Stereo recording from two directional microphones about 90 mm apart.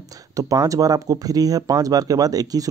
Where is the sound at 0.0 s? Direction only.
40° right (ahead or behind).